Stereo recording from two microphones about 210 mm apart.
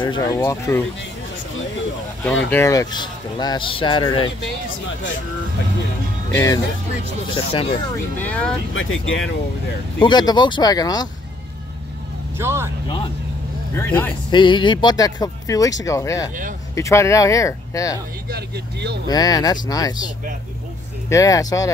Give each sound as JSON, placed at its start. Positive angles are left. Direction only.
{"t": 0.0, "sound": "speech", "side_deg": 20}
{"t": 2.5, "sound": "speech", "side_deg": 15}
{"t": 6.3, "sound": "speech", "side_deg": 15}
{"t": 7.9, "sound": "speech", "side_deg": 10}
{"t": 8.7, "sound": "speech", "side_deg": 70}
{"t": 9.9, "sound": "speech", "side_deg": 20}
{"t": 12.4, "sound": "speech", "side_deg": -10}
{"t": 12.8, "sound": "speech", "side_deg": 25}
{"t": 14.3, "sound": "speech", "side_deg": 20}
{"t": 18.3, "sound": "speech", "side_deg": -55}
{"t": 19.0, "sound": "speech", "side_deg": 20}
{"t": 21.1, "sound": "speech", "side_deg": 15}